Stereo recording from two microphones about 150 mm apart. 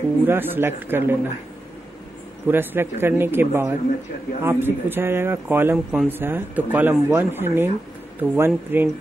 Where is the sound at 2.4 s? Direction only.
15° right (ahead or behind).